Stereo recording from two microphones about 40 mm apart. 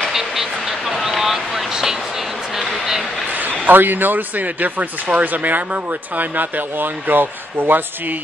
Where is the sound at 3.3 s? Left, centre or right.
Right.